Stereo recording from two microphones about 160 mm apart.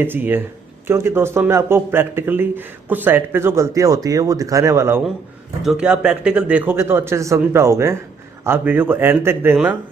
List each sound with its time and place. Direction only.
0.0 s speech: 15° right (ahead or behind)
5.6 s speech: 5° right (ahead or behind)